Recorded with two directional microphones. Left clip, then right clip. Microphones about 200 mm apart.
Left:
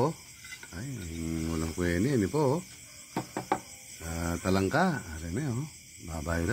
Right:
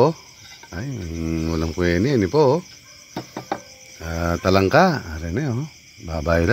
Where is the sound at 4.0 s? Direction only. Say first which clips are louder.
Right 12 dB; 50° right (ahead or behind).